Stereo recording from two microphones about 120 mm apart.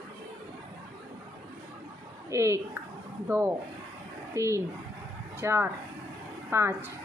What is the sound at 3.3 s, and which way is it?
Speech, 20° right (ahead or behind).